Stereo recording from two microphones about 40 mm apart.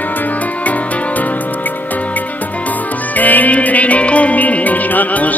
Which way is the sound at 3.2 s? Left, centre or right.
Left.